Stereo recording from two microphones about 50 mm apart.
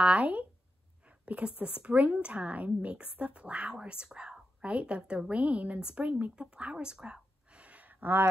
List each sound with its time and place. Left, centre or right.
0.0 s speech: right